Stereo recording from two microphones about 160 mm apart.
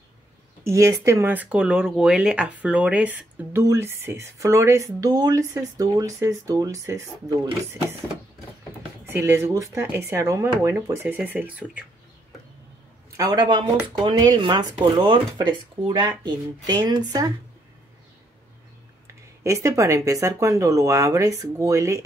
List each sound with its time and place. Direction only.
0.7 s speech: 20° right (ahead or behind)
7.2 s speech: 35° right (ahead or behind)
9.0 s speech: 15° right (ahead or behind)
13.1 s speech: 25° right (ahead or behind)
19.0 s speech: 20° right (ahead or behind)